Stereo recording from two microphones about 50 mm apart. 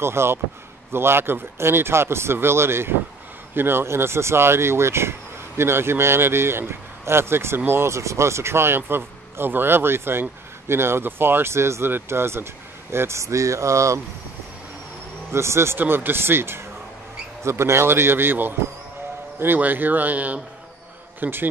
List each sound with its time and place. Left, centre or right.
0.0 s a man's voice: right
7.9 s speech: right
11.5 s a man's voice: right
13.2 s speech: right
15.3 s a man's voice: right
15.8 s speech: right
17.4 s a man's voice: right
21.2 s a man's voice: right